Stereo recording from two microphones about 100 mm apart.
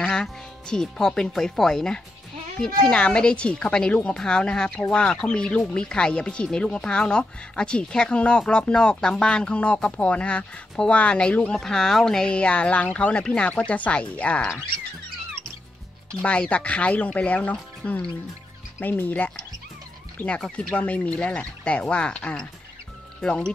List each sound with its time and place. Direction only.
0.0 s speech: 5° left (ahead or behind)
16.2 s speech: 15° left (ahead or behind)